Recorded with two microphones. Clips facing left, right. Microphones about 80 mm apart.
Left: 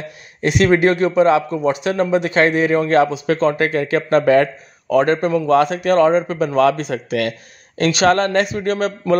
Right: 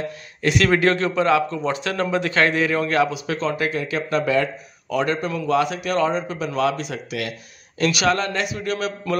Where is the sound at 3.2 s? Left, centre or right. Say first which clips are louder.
Left 7 dB; left.